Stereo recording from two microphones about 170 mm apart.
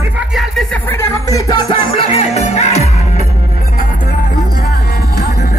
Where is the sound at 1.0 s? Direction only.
25° left (ahead or behind); by 2.9 s 40° left (ahead or behind).